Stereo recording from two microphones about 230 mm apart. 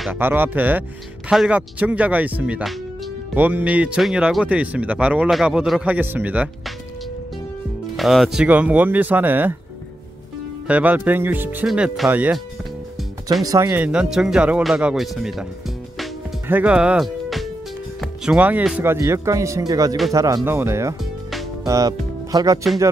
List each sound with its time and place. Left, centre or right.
0.0 s speech: centre
7.9 s speech: centre
10.7 s speech: centre
13.4 s speech: centre
16.0 s music: centre
18.0 s speech: centre
21.0 s music: centre
21.6 s speech: centre